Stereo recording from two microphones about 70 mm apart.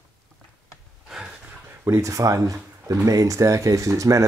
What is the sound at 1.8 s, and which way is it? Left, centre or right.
Speech, right.